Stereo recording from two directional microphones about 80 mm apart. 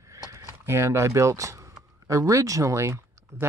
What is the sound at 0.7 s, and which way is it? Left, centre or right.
Speech, right.